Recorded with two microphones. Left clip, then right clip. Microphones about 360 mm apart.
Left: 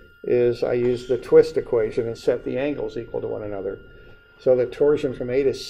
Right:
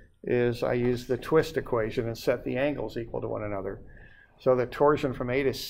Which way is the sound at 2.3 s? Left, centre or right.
Right.